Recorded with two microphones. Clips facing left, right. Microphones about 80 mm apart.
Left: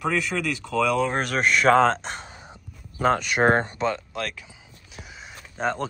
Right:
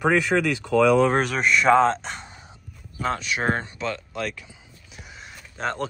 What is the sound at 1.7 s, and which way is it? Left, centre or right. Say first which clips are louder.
Speech: even; centre.